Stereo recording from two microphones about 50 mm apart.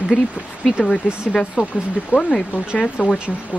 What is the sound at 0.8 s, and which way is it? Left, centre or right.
Speech, centre.